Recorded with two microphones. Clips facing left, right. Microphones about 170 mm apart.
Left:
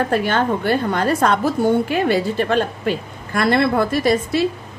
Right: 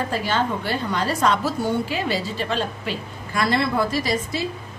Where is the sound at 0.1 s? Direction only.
55° left (ahead or behind).